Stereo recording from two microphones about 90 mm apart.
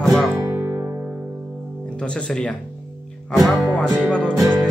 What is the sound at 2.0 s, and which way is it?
Speech, 10° left (ahead or behind).